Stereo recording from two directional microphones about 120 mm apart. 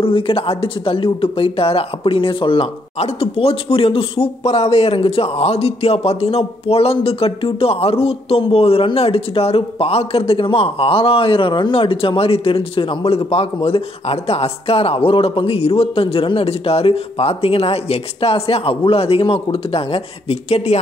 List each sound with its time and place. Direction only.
0.0 s speech: 50° left (ahead or behind)